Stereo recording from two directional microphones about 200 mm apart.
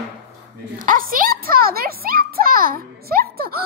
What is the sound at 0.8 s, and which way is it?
A child's voice, 45° right (ahead or behind).